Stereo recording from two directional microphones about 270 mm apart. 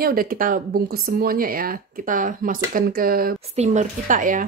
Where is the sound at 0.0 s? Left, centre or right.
Right.